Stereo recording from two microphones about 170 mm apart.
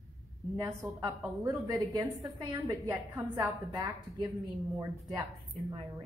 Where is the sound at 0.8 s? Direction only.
15° right (ahead or behind).